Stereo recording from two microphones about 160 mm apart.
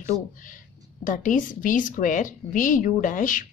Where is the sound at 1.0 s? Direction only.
55° left (ahead or behind).